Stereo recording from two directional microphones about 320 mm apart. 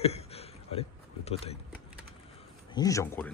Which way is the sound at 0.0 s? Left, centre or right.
Centre.